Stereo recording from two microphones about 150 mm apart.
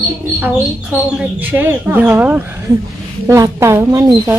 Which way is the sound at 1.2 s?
10° right (ahead or behind).